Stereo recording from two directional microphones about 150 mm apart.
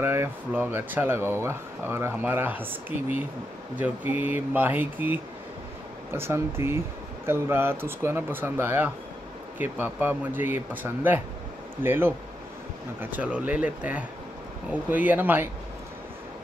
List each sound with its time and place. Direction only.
0.0 s speech: 15° right (ahead or behind)